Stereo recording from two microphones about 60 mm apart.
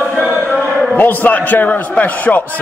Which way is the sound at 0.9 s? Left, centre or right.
Left.